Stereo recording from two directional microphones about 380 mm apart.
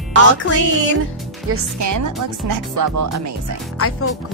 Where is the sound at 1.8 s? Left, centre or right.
Right.